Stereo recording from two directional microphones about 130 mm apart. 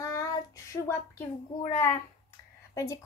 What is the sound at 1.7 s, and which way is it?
Speech, 25° left (ahead or behind).